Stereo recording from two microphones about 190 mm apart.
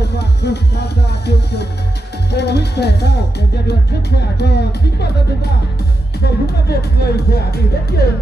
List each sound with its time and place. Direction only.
0.0 s music: 60° left (ahead or behind)
4.4 s speech: 60° left (ahead or behind)